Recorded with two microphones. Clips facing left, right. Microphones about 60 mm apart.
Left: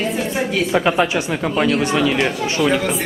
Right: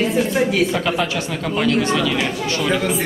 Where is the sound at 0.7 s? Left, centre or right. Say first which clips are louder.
Left 4 dB; left.